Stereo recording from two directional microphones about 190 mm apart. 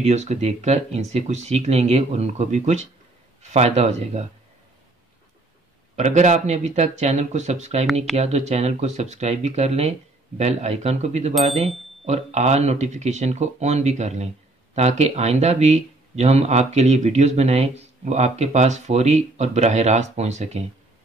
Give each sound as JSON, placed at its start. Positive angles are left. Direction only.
{"t": 0.0, "sound": "speech", "side_deg": -35}
{"t": 5.9, "sound": "speech", "side_deg": -35}